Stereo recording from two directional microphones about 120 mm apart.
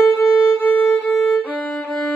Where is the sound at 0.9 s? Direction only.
15° left (ahead or behind).